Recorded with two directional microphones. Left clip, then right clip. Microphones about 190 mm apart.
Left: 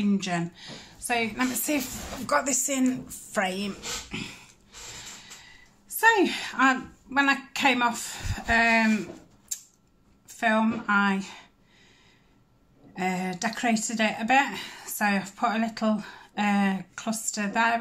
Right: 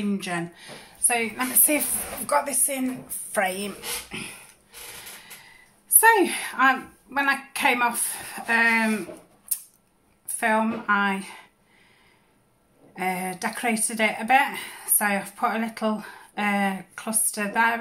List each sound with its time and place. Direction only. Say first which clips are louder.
0.0 s speech: even; centre (ahead or behind)
2.2 s a woman's voice: right 1 dB; 15° left (ahead or behind)
3.3 s speech: right 3 dB; 10° left (ahead or behind)
10.2 s speech: right 2 dB; centre (ahead or behind)
12.9 s speech: right 2 dB; centre (ahead or behind)